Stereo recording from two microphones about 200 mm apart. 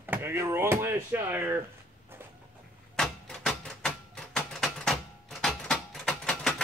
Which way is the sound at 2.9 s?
Centre (ahead or behind).